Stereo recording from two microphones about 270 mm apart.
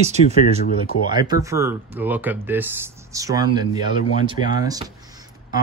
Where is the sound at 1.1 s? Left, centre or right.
Centre.